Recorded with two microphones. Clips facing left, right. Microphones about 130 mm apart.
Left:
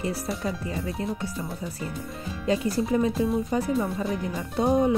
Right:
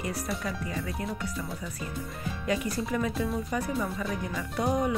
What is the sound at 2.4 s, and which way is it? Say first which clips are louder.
Speech: left 6 dB; 30° left (ahead or behind).